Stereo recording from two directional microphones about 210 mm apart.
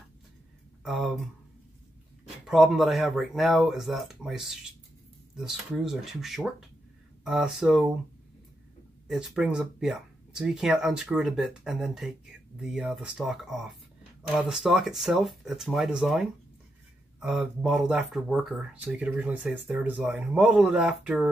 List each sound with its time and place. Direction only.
0.8 s speech: centre (ahead or behind)
9.0 s speech: centre (ahead or behind)